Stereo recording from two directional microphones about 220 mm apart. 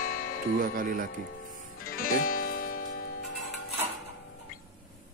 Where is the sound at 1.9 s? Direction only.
40° left (ahead or behind).